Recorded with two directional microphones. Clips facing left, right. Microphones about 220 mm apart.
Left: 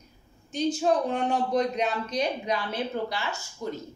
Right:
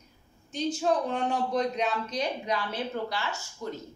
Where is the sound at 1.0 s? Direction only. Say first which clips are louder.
Left 2 dB; 15° left (ahead or behind).